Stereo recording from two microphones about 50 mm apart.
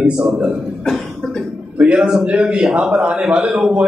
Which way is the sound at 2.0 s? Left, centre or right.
Centre.